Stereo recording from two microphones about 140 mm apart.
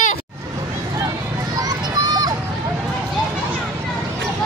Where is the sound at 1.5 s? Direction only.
25° right (ahead or behind).